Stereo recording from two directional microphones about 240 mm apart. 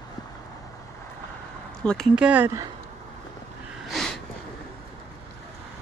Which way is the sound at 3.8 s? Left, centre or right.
Centre.